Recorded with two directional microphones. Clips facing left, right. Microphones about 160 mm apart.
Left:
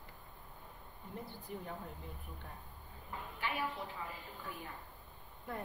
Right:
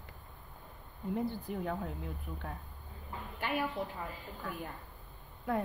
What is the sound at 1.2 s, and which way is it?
Speech, 90° right.